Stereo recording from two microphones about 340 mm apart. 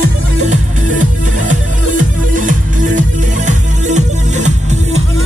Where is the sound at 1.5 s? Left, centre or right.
Right.